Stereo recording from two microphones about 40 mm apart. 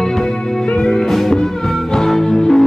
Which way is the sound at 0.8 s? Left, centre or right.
Centre.